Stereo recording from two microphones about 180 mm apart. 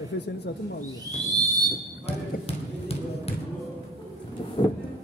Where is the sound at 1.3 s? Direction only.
20° right (ahead or behind).